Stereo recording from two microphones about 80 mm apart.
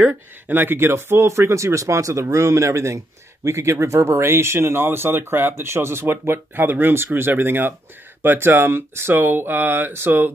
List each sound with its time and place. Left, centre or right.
0.0 s speech: right